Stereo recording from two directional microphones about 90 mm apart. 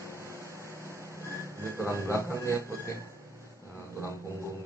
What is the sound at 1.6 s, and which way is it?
Speech, 30° left (ahead or behind).